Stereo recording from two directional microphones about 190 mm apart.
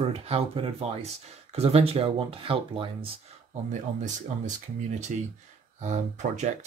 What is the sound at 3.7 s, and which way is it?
Speech, 40° right (ahead or behind).